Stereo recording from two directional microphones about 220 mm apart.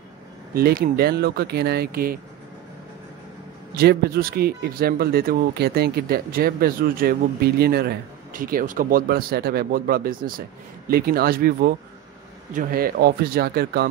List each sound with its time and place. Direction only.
0.6 s speech: 45° right (ahead or behind)
3.7 s speech: 45° right (ahead or behind)